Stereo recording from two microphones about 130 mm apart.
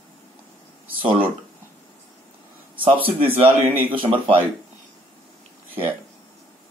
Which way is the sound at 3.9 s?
40° right (ahead or behind).